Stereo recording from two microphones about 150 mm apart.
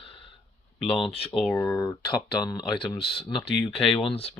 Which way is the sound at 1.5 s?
20° left (ahead or behind).